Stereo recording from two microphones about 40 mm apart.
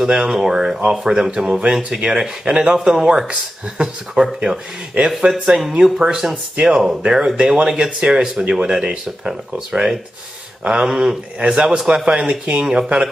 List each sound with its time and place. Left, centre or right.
0.0 s speech: centre
5.0 s speech: right
5.9 s speech: centre; by 12.6 s right
12.6 s speech: centre